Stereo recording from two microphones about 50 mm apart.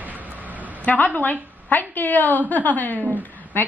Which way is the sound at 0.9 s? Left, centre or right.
Left.